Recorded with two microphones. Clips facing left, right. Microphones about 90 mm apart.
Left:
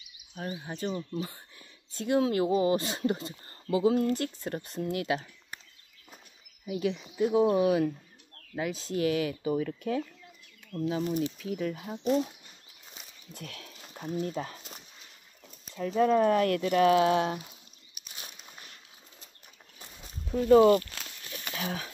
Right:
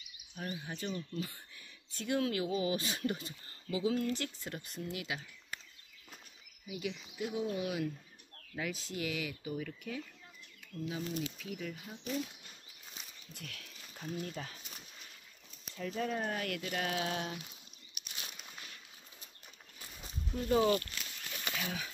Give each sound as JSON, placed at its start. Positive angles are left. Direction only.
{"t": 0.7, "sound": "speech", "side_deg": 30}
{"t": 6.7, "sound": "speech", "side_deg": 40}
{"t": 10.7, "sound": "speech", "side_deg": 70}
{"t": 11.3, "sound": "speech", "side_deg": 40}
{"t": 13.3, "sound": "speech", "side_deg": 35}
{"t": 15.9, "sound": "speech", "side_deg": 70}
{"t": 16.4, "sound": "speech", "side_deg": 45}
{"t": 20.2, "sound": "speech", "side_deg": 90}
{"t": 20.5, "sound": "speech", "side_deg": 55}
{"t": 21.5, "sound": "speech", "side_deg": 40}